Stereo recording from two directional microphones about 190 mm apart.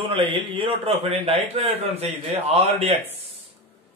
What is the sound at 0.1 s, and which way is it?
A man's voice, 25° right (ahead or behind).